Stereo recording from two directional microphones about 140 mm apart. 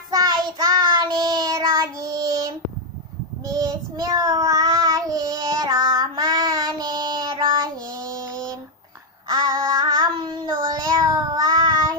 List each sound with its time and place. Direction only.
0.1 s child singing: 25° right (ahead or behind)
9.3 s child singing: 25° right (ahead or behind)